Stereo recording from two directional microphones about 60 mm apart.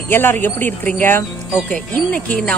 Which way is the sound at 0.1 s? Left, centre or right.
Left.